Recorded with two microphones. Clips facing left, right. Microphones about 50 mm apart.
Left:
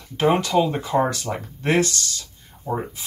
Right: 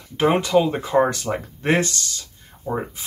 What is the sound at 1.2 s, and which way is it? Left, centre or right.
Speech, right.